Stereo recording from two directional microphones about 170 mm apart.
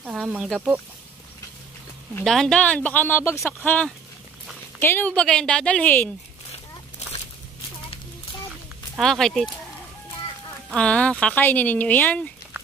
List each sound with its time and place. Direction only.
0.0 s speech: 5° right (ahead or behind)
2.2 s speech: 5° left (ahead or behind)
8.9 s speech: 5° left (ahead or behind)
10.7 s speech: 5° left (ahead or behind)